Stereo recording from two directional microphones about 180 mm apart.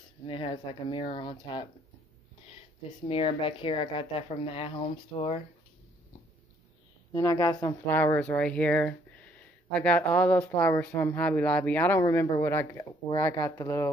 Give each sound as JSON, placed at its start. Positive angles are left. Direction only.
{"t": 0.3, "sound": "speech", "side_deg": 30}
{"t": 3.1, "sound": "speech", "side_deg": 30}
{"t": 7.1, "sound": "speech", "side_deg": 20}
{"t": 7.8, "sound": "speech", "side_deg": 10}